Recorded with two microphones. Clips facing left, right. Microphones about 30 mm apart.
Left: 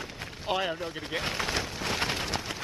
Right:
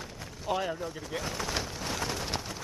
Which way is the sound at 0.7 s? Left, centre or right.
Left.